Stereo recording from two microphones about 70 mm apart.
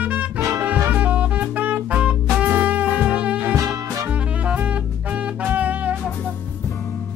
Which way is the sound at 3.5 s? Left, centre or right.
Right.